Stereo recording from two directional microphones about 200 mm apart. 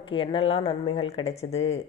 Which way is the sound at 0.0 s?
25° left (ahead or behind).